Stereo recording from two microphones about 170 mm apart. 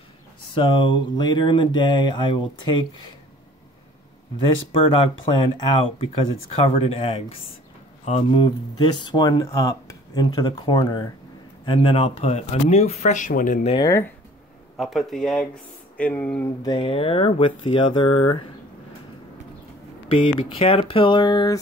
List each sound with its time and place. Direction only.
0.6 s speech: 30° left (ahead or behind)
4.8 s speech: 30° left (ahead or behind); by 13.6 s 50° left (ahead or behind)
13.8 s speech: 15° left (ahead or behind)
14.8 s speech: centre (ahead or behind)
16.6 s speech: 30° left (ahead or behind)
20.3 s speech: 30° left (ahead or behind)